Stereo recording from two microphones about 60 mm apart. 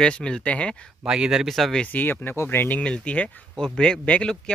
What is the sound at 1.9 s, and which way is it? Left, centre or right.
Speech, left.